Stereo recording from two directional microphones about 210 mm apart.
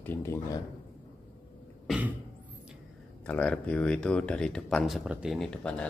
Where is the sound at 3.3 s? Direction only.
5° left (ahead or behind).